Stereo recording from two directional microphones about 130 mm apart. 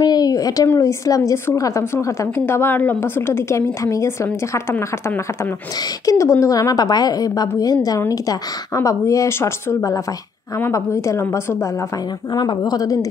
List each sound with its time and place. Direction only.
0.0 s a sound: 30° left (ahead or behind)
0.7 s a woman's voice: 20° left (ahead or behind)
12.3 s speech: 30° left (ahead or behind)